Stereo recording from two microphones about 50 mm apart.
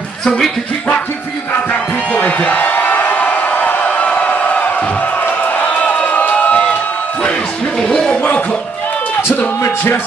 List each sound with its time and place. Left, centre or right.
0.2 s speech: centre
1.5 s music: left
5.2 s crowd: left
7.8 s speech: centre